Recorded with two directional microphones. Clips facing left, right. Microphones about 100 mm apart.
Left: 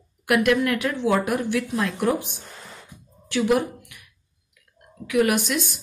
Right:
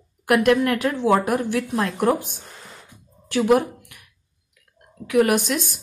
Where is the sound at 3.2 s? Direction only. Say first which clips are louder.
Right 3 dB; 40° right (ahead or behind).